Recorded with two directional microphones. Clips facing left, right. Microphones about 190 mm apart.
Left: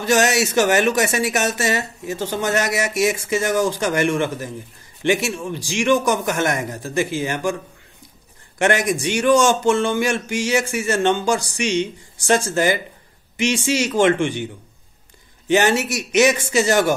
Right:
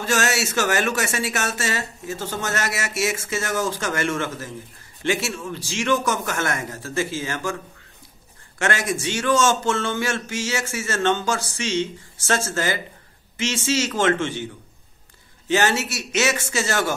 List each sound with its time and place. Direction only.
0.0 s speech: 15° left (ahead or behind)
8.5 s speech: 15° left (ahead or behind)